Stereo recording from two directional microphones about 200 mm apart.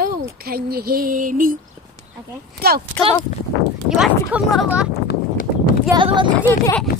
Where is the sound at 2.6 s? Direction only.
50° right (ahead or behind).